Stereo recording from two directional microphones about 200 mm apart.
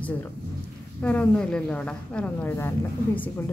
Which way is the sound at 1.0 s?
5° left (ahead or behind).